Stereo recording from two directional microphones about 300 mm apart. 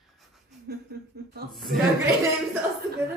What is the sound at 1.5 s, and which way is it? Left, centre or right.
Speech, centre.